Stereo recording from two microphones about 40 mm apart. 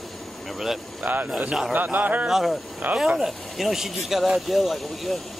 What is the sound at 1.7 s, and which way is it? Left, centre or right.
Speech, right.